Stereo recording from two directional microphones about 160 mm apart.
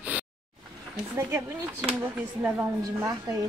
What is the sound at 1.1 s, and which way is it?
Speech, 15° right (ahead or behind).